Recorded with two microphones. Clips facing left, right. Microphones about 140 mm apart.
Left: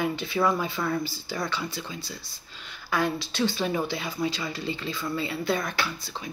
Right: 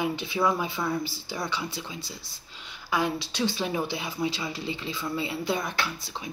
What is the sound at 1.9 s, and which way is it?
Speech, 25° right (ahead or behind).